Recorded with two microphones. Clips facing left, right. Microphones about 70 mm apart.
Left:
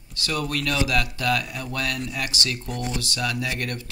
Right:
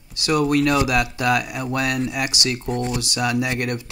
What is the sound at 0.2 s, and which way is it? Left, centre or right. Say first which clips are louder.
Speech: right 9 dB; centre.